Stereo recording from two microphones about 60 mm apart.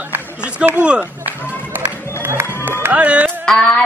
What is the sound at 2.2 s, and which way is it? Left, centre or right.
Music, right.